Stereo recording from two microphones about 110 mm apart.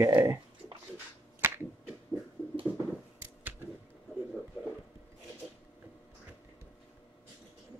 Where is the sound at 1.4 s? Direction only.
20° right (ahead or behind).